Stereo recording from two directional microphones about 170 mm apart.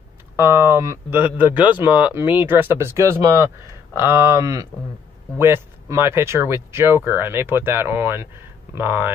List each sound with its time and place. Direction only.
0.4 s speech: 15° right (ahead or behind)